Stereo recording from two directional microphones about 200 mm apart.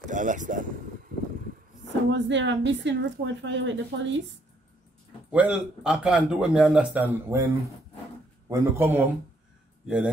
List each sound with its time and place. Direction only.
0.0 s a sound: 40° right (ahead or behind)
2.0 s a woman's voice: 65° right (ahead or behind)
5.3 s a man's voice: 5° right (ahead or behind)
8.5 s a man's voice: 15° right (ahead or behind)